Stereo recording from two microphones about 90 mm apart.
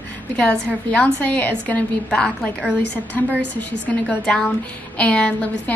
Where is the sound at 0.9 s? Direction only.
15° left (ahead or behind).